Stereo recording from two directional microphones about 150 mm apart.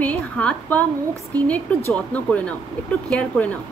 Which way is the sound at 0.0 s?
10° left (ahead or behind).